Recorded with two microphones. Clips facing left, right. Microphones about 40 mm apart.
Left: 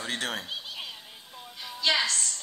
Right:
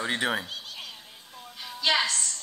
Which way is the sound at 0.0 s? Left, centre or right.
Centre.